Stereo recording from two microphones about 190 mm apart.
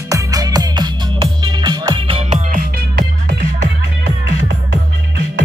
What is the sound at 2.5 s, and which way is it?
Music, 45° right (ahead or behind).